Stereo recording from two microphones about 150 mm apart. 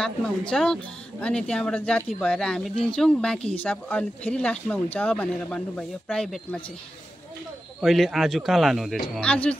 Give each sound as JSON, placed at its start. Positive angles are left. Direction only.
{"t": 0.0, "sound": "speech", "side_deg": 5}
{"t": 2.7, "sound": "speech", "side_deg": 35}
{"t": 3.0, "sound": "speech", "side_deg": 5}
{"t": 7.8, "sound": "speech", "side_deg": 0}